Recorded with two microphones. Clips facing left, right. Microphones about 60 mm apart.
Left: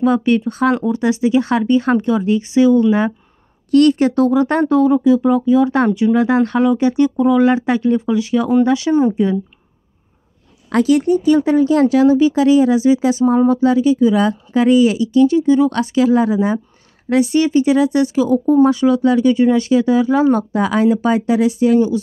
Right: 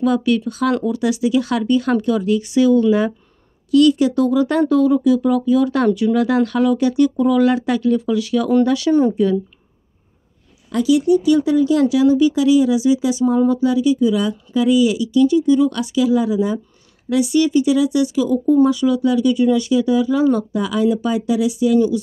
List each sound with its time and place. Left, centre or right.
0.0 s speech: left
3.7 s speech: left
10.7 s speech: left